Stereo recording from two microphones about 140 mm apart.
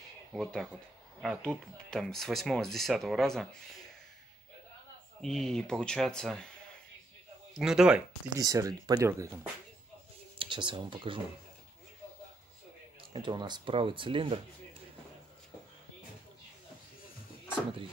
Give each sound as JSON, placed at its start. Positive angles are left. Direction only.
{"t": 0.3, "sound": "speech", "side_deg": 0}
{"t": 5.2, "sound": "speech", "side_deg": 5}
{"t": 7.5, "sound": "speech", "side_deg": -5}
{"t": 8.4, "sound": "speech", "side_deg": -25}
{"t": 10.4, "sound": "speech", "side_deg": -35}
{"t": 13.1, "sound": "speech", "side_deg": -30}